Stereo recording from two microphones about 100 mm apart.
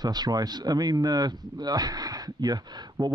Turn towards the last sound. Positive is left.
turn(degrees=-40)  # may be behind; listen again after turning